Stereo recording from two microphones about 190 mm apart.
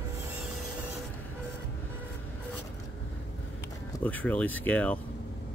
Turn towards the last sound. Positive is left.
turn(degrees=5)  # may be behind; listen again after turning